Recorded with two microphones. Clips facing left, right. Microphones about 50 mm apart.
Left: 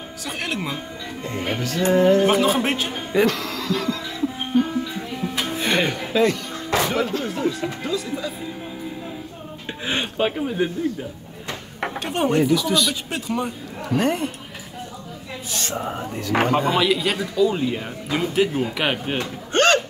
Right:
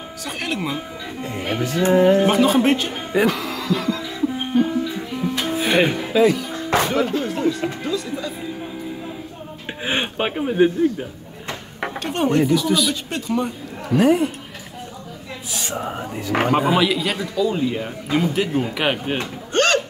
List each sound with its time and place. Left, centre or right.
0.4 s speech: centre
1.6 s speech: centre
2.2 s speech: centre
3.1 s music: centre
6.9 s speech: centre
9.8 s speech: right
12.0 s speech: centre
15.5 s speech: centre
19.5 s a sound: left